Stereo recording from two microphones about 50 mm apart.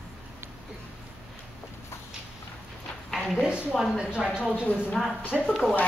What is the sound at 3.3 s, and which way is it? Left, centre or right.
A woman's voice, centre.